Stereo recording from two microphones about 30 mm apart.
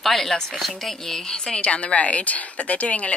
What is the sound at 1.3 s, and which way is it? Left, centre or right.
Speech, left.